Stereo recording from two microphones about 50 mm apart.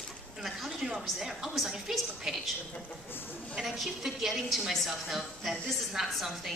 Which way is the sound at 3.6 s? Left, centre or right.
Centre.